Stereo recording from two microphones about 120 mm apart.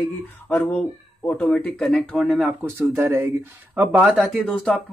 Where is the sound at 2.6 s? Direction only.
20° right (ahead or behind).